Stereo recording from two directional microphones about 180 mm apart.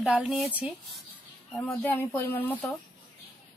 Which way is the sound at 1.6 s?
10° left (ahead or behind).